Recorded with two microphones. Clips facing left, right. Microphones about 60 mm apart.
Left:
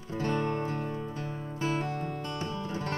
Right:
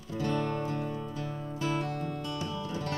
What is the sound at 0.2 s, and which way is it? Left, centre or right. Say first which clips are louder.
Music: left 1 dB; left.